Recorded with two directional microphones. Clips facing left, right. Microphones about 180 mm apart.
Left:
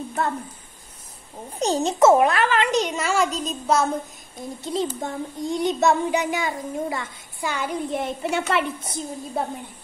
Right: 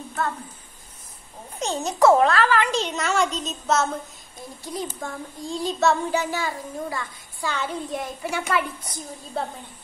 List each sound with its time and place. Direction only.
1.6 s a child's voice: 35° left (ahead or behind); by 3.8 s 10° left (ahead or behind)
4.6 s a child's voice: 20° left (ahead or behind)
8.0 s a child's voice: 25° left (ahead or behind)